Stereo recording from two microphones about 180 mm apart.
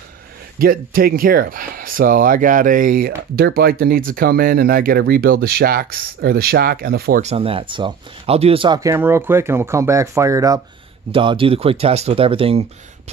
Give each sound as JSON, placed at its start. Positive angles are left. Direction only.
{"t": 0.6, "sound": "speech", "side_deg": -55}
{"t": 3.3, "sound": "speech", "side_deg": -60}
{"t": 7.2, "sound": "speech", "side_deg": -35}
{"t": 11.1, "sound": "speech", "side_deg": -30}